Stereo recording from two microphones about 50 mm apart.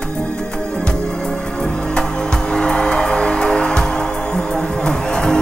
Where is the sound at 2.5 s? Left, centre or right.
Centre.